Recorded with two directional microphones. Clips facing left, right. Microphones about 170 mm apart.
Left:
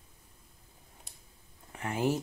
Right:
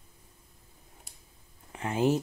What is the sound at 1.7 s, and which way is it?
Speech, 20° right (ahead or behind).